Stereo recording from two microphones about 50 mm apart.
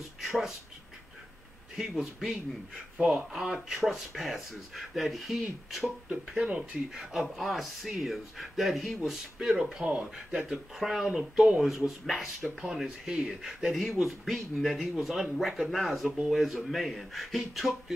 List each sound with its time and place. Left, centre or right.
0.2 s speech: centre
1.8 s speech: centre
6.2 s speech: centre
6.9 s speech: centre